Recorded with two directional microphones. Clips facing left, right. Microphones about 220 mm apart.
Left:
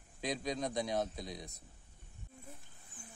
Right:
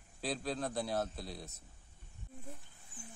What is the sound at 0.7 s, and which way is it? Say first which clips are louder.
Speech: left 1 dB; 5° right (ahead or behind).